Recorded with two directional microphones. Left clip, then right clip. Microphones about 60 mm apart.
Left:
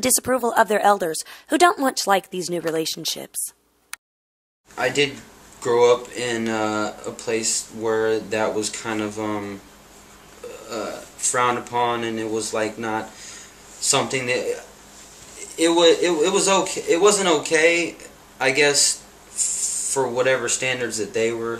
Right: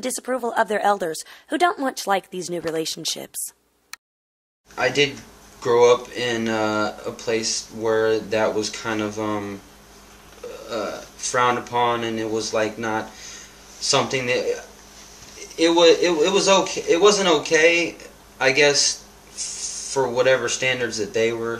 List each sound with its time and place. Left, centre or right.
0.0 s speech: left; by 1.4 s centre
1.5 s speech: centre
1.8 s speech: centre
4.7 s speech: centre
18.4 s a sound: centre
20.1 s speech: centre